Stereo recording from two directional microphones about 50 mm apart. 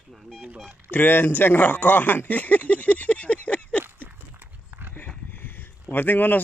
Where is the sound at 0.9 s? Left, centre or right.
Left.